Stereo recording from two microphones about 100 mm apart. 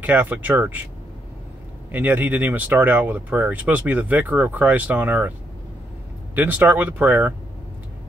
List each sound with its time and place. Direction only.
0.0 s speech: 15° right (ahead or behind)
1.9 s speech: 15° right (ahead or behind)
6.3 s speech: 15° right (ahead or behind)